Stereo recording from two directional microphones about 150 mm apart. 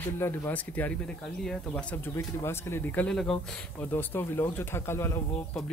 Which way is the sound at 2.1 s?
15° left (ahead or behind).